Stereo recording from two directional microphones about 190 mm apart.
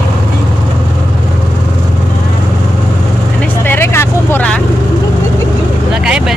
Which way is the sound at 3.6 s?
10° left (ahead or behind).